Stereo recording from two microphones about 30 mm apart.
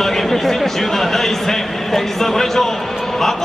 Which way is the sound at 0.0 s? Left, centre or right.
Centre.